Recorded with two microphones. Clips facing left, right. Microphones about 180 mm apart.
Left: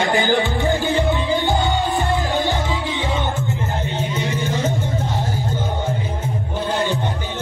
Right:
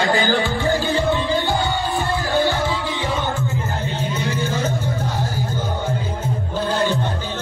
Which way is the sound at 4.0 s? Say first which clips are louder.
Right 1 dB; 20° left (ahead or behind).